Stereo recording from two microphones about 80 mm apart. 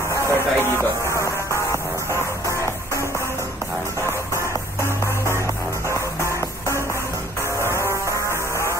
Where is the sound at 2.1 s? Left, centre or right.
Left.